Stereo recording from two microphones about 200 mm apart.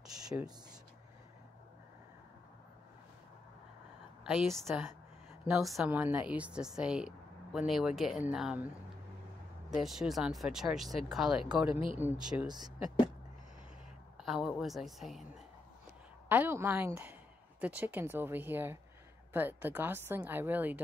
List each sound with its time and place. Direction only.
4.2 s a woman's voice: centre (ahead or behind)
9.8 s a woman's voice: centre (ahead or behind)
12.4 s speech: 20° right (ahead or behind)
14.1 s a woman's voice: centre (ahead or behind)
16.3 s speech: 10° right (ahead or behind)